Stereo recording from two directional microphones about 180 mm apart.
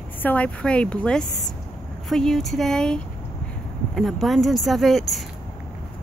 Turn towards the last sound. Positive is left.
turn(degrees=0)  # may be behind; listen again after turning